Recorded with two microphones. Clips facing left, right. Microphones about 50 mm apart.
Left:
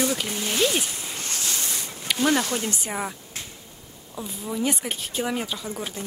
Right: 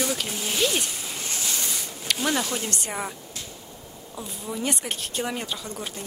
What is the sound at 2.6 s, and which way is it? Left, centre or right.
Speech, centre.